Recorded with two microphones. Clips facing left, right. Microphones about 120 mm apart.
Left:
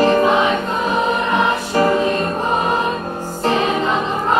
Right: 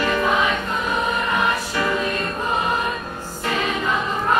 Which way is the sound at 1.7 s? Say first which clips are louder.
Left 7 dB; 40° left (ahead or behind).